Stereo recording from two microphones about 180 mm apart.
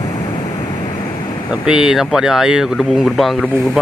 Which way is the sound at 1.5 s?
5° right (ahead or behind).